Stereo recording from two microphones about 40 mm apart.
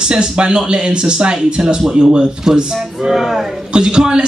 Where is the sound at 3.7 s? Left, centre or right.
Right.